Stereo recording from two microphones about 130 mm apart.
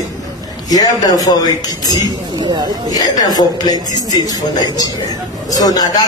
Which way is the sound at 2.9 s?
30° left (ahead or behind).